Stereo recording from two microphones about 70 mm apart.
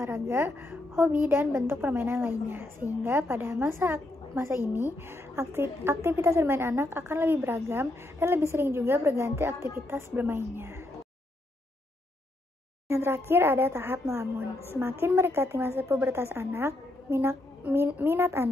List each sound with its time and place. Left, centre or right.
0.0 s a woman's voice: right
12.8 s a woman's voice: right